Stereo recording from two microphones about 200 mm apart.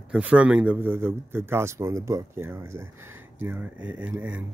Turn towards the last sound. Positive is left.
turn(degrees=-10)  # may be behind; listen again after turning